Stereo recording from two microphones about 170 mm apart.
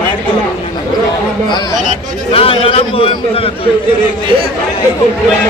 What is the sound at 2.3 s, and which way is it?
Speech, 35° left (ahead or behind).